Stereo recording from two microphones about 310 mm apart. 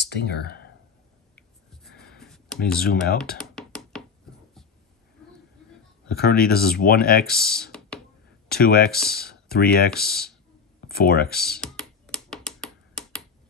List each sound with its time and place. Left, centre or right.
0.0 s speech: left
1.3 s clicking: centre
2.8 s speech: left
3.3 s music: centre
6.1 s speech: left
7.5 s a sound: centre
8.5 s speech: left
11.6 s a sound: centre